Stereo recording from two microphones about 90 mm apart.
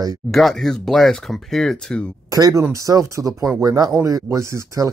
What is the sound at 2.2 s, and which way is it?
Speech, 40° right (ahead or behind).